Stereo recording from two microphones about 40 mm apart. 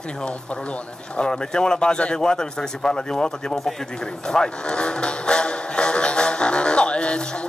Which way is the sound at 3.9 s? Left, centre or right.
Centre.